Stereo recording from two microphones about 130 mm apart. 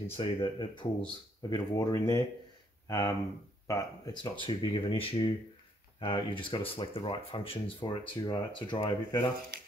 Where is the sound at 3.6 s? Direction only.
25° left (ahead or behind).